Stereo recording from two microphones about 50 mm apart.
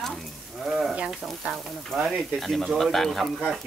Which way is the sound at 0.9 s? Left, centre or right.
Centre.